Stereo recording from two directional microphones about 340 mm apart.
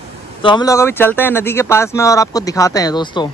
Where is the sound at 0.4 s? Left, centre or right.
Centre.